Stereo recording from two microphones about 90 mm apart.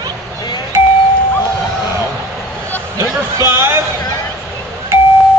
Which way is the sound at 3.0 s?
30° right (ahead or behind).